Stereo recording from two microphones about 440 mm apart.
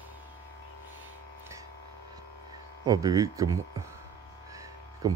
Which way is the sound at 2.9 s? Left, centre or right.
Centre.